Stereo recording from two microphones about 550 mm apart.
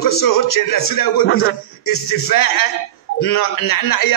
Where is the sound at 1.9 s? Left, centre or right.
Left.